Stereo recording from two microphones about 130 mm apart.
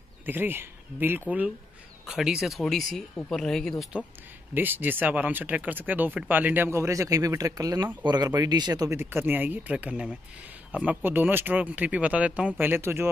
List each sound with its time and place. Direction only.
0.2 s speech: 15° right (ahead or behind)
2.0 s speech: 5° right (ahead or behind)
4.6 s speech: 15° right (ahead or behind)
9.0 s speech: 15° right (ahead or behind)